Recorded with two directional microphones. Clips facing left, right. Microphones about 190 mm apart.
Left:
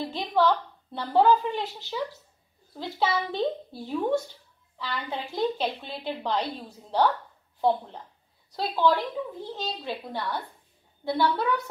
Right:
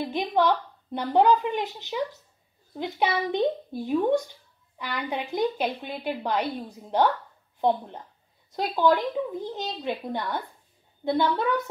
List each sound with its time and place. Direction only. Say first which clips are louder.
0.0 s a woman's voice: right 1 dB; 15° right (ahead or behind)
8.5 s a woman's voice: right 2 dB; 15° right (ahead or behind)